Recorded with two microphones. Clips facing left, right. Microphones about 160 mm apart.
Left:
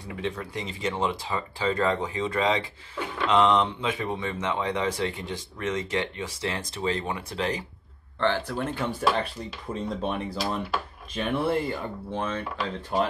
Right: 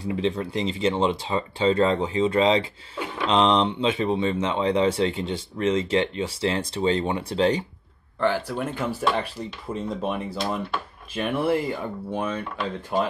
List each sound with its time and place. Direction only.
0.1 s speech: 25° right (ahead or behind)
8.2 s speech: 10° right (ahead or behind)